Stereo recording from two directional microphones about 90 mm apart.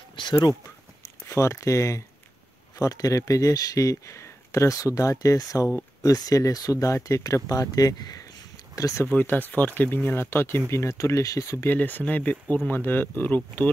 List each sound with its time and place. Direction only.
0.1 s a sound: 60° left (ahead or behind)
1.2 s speech: 30° left (ahead or behind)
9.0 s speech: 20° left (ahead or behind)
11.7 s speech: 20° left (ahead or behind)